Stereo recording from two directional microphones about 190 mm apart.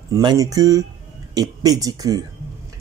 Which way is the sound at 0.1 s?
20° right (ahead or behind).